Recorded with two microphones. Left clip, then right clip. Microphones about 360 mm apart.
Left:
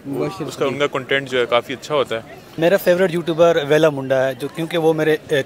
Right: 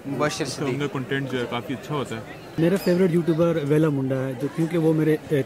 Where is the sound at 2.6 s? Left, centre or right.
Left.